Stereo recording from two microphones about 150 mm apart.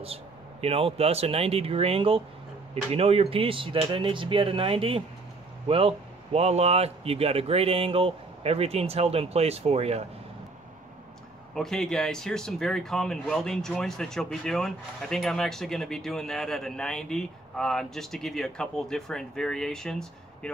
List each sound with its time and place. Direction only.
0.0 s speech: 40° right (ahead or behind)
11.5 s speech: 5° left (ahead or behind)